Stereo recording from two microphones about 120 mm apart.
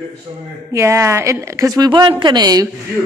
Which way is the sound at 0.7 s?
25° right (ahead or behind).